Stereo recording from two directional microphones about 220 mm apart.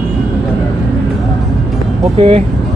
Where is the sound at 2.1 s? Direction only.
25° right (ahead or behind).